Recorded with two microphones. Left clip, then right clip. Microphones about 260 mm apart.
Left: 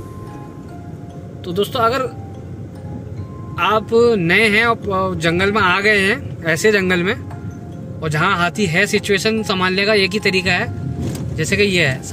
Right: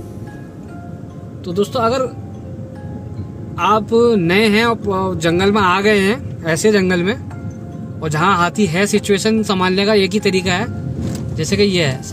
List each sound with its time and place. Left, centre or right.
1.4 s speech: centre
3.5 s speech: centre